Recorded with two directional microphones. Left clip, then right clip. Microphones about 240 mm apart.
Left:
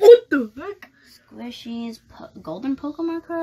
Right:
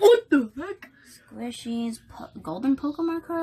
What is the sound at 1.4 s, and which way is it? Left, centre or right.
Speech, centre.